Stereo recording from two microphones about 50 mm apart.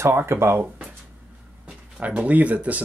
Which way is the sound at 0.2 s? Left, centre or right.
Right.